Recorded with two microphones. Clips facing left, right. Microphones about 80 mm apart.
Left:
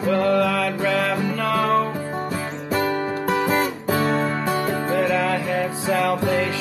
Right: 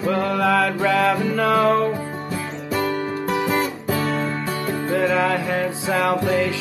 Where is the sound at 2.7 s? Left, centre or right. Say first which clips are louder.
Left 1 dB; left.